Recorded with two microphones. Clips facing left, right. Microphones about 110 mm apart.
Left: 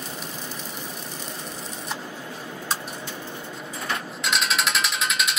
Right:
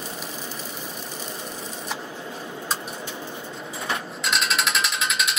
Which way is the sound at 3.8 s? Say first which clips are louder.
Right 1 dB; centre (ahead or behind).